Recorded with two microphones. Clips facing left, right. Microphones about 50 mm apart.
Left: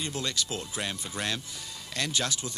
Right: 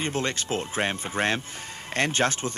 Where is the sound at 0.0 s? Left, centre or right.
Right.